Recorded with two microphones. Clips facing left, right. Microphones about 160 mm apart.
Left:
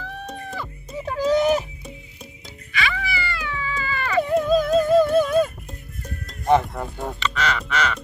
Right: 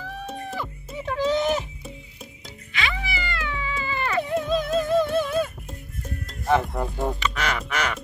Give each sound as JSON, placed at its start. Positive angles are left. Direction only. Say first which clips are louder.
{"t": 0.0, "sound": "music", "louder": "even", "side_deg": 0}
{"t": 1.0, "sound": "music", "louder": "left 3 dB", "side_deg": 40}
{"t": 2.7, "sound": "cat", "louder": "left 3 dB", "side_deg": -20}
{"t": 4.2, "sound": "music", "louder": "left 7 dB", "side_deg": 40}
{"t": 6.5, "sound": "speech", "louder": "left 3 dB", "side_deg": 0}
{"t": 7.1, "sound": "speech", "louder": "left 1 dB", "side_deg": -10}